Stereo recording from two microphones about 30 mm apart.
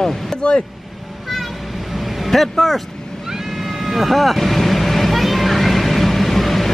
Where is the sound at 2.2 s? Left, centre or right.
Centre.